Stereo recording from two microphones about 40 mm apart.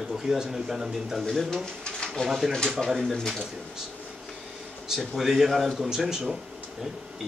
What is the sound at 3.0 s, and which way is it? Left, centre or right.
Speech, centre.